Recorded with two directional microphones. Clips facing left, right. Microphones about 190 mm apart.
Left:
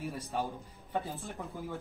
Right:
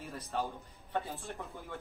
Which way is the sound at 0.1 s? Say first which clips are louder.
Left 1 dB; 10° left (ahead or behind).